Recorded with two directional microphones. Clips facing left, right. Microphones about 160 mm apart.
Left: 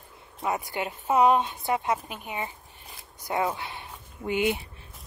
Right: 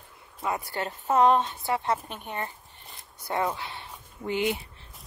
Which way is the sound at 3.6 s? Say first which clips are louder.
Left 1 dB; 20° left (ahead or behind).